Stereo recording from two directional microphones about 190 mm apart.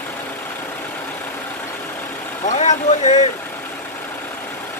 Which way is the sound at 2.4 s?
35° left (ahead or behind).